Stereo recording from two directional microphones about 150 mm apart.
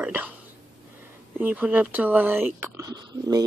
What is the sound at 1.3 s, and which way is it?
Speech, 10° right (ahead or behind).